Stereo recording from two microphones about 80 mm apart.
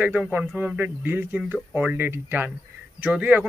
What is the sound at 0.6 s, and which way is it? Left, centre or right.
Speech, right.